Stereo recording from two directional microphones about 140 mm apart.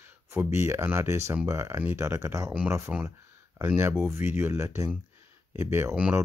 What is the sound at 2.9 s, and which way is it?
Speech, 10° right (ahead or behind).